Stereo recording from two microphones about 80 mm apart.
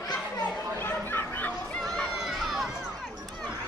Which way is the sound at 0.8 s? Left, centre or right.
Left.